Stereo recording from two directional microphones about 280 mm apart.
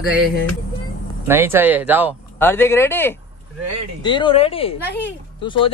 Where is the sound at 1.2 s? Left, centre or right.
Centre.